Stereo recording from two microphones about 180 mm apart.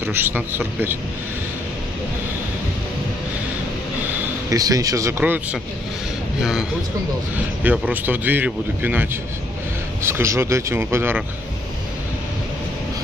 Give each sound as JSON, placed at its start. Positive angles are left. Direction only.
{"t": 0.0, "sound": "speech", "side_deg": -10}
{"t": 4.5, "sound": "speech", "side_deg": -20}
{"t": 7.6, "sound": "speech", "side_deg": -10}